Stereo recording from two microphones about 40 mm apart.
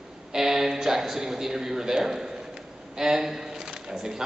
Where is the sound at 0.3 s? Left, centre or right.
Centre.